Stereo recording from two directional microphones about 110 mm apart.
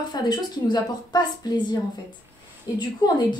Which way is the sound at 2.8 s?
40° left (ahead or behind).